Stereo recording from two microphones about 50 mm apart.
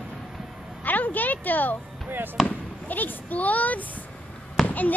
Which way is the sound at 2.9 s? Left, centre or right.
Left.